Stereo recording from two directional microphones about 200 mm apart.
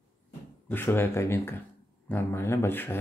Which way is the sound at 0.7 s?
10° left (ahead or behind).